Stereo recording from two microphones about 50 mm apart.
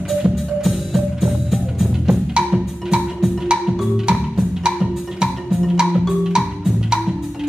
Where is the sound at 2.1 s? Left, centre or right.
Centre.